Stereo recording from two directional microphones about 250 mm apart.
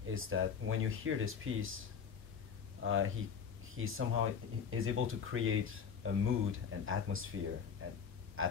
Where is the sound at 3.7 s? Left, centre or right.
Right.